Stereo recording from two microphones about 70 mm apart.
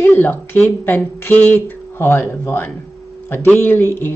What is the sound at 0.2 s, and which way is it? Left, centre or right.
A woman's voice, left.